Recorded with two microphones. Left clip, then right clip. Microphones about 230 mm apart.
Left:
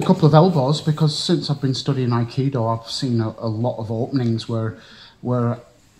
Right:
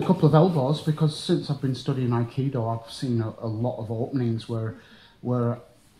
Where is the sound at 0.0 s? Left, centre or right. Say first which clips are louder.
Left 5 dB; left.